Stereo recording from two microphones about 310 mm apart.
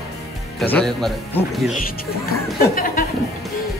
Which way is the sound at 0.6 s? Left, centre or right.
Centre.